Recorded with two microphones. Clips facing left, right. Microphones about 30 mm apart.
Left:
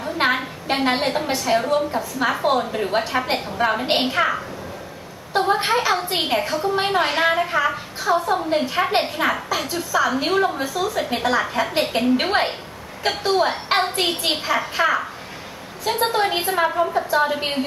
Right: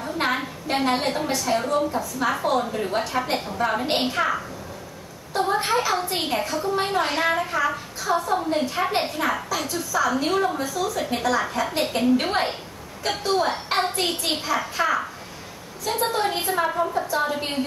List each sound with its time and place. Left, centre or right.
0.0 s a sound: left
0.8 s a woman's voice: left
5.3 s a woman's voice: left
9.7 s a woman's voice: left
10.0 s a woman's voice: left
14.1 s a woman's voice: left
16.6 s a woman's voice: left